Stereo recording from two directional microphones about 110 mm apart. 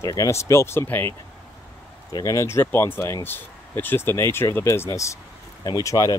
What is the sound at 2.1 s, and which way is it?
Speech, 30° left (ahead or behind).